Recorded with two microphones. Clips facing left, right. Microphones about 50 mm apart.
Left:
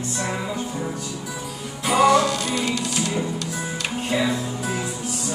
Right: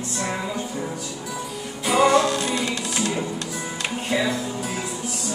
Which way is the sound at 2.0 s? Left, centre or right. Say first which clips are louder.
Left 1 dB; right.